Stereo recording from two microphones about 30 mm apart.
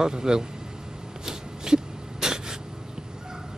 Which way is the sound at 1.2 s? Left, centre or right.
Right.